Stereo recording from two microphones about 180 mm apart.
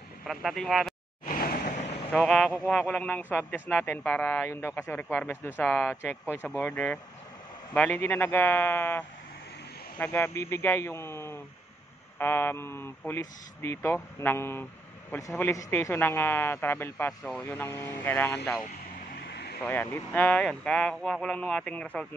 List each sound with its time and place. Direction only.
0.3 s speech: centre (ahead or behind)
1.2 s a sound: 50° left (ahead or behind)
2.1 s a man's voice: 5° left (ahead or behind)
19.2 s vehicle: 65° left (ahead or behind)
19.6 s speech: 10° left (ahead or behind)